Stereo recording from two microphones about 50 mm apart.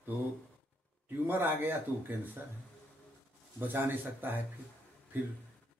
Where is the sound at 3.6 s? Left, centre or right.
Right.